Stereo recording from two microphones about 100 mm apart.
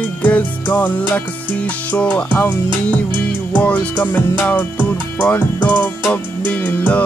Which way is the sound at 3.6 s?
15° left (ahead or behind).